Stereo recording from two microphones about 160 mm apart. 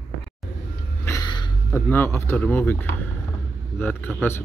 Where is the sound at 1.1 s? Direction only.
20° left (ahead or behind).